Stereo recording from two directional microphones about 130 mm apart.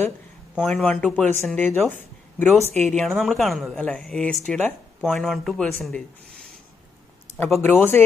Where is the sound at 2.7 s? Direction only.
60° right (ahead or behind).